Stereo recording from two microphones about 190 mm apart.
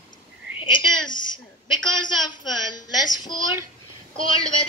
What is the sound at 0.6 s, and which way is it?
Child singing, 25° left (ahead or behind).